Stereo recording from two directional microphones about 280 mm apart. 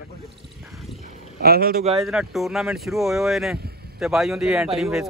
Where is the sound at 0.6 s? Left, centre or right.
Centre.